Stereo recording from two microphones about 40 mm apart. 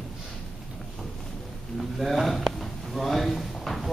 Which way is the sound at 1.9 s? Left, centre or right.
Centre.